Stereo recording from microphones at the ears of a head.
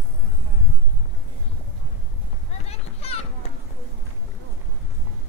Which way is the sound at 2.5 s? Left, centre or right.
Left.